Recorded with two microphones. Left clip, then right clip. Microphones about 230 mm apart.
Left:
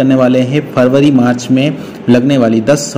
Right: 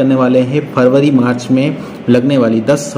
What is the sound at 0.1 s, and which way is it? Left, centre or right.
A man's voice, left.